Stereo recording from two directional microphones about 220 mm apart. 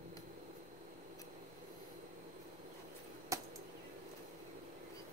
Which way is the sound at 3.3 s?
15° right (ahead or behind).